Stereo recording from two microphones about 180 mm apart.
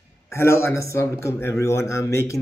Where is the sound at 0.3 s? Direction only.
15° left (ahead or behind).